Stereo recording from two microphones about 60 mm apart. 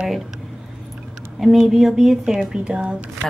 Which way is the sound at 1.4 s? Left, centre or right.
Centre.